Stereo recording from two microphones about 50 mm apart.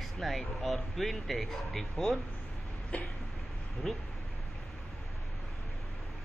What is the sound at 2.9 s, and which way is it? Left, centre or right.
Cough, left.